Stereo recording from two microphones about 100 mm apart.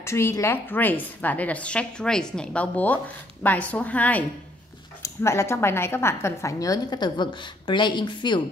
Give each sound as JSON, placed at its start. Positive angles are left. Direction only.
{"t": 0.0, "sound": "a woman's voice", "side_deg": 25}
{"t": 5.0, "sound": "a woman's voice", "side_deg": 30}